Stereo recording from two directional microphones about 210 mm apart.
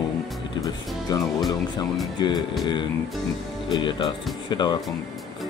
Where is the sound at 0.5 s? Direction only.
15° left (ahead or behind).